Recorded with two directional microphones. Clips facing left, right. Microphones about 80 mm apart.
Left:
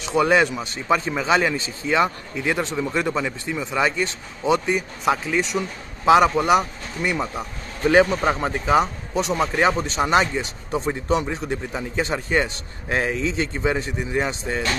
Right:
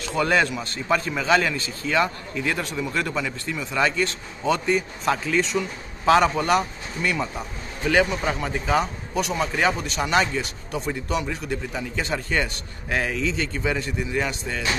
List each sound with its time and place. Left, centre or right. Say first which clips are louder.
0.0 s a man's voice: left 3 dB; centre
7.8 s a man's voice: left 4 dB; left